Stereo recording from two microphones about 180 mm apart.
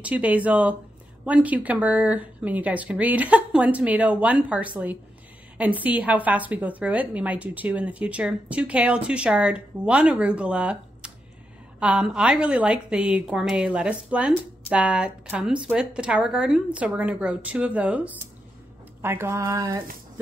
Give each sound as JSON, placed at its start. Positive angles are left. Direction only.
{"t": 0.0, "sound": "a woman's voice", "side_deg": -10}